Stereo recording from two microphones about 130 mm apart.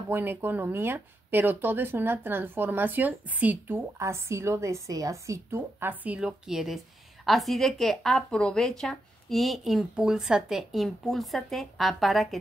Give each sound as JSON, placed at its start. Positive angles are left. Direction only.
{"t": 0.1, "sound": "a woman's voice", "side_deg": -15}